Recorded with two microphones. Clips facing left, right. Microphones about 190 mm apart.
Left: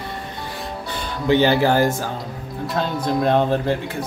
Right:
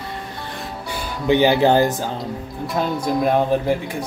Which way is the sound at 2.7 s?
5° right (ahead or behind).